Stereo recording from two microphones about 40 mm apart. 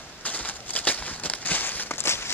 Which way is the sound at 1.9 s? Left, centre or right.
Left.